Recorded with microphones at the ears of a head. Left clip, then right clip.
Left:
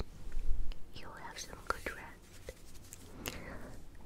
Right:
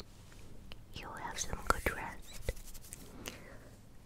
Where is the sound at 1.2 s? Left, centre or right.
Right.